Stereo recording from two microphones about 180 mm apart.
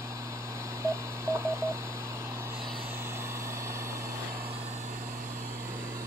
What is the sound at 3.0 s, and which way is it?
Vehicle, 15° right (ahead or behind).